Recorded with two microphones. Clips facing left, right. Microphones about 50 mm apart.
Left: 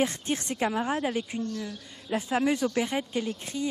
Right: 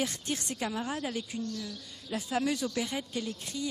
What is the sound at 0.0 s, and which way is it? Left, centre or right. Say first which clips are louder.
Speech: left 6 dB; left.